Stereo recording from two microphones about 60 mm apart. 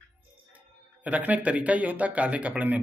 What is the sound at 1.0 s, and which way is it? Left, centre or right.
Speech, right.